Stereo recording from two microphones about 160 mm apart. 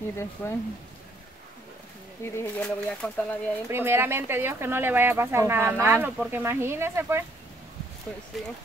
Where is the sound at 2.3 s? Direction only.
10° left (ahead or behind).